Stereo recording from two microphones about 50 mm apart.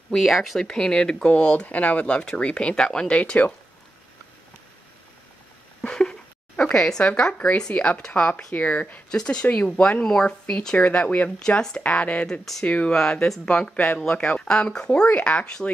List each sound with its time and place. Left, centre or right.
0.1 s speech: centre
0.7 s speech: centre
5.8 s a sound: centre
7.1 s speech: left
9.1 s speech: centre
10.8 s speech: left
11.3 s speech: centre